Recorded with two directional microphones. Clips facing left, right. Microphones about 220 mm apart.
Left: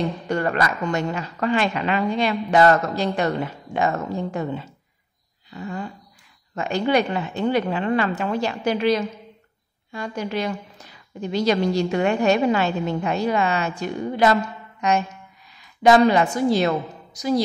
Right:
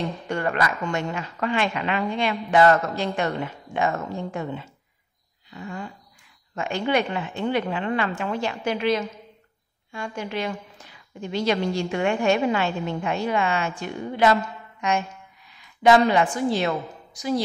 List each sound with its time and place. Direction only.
0.3 s a woman's voice: 40° left (ahead or behind)
5.5 s a sound: 40° left (ahead or behind)
6.5 s a woman's voice: 40° left (ahead or behind)
14.8 s music: 40° left (ahead or behind)
15.8 s a woman's voice: 40° left (ahead or behind)